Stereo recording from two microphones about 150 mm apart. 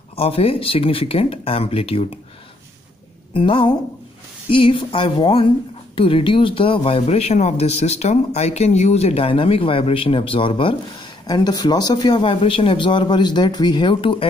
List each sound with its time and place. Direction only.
0.1 s speech: 40° left (ahead or behind)
3.3 s speech: 35° left (ahead or behind)